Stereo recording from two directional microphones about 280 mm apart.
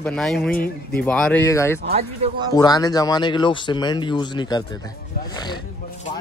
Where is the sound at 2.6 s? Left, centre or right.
Centre.